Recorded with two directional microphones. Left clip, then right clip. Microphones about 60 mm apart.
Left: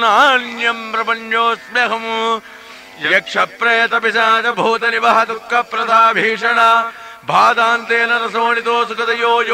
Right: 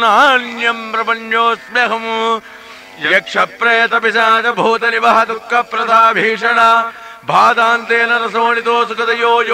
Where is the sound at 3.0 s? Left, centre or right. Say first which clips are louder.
Right 2 dB; right.